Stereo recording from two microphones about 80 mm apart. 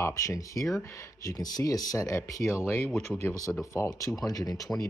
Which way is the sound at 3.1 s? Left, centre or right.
Centre.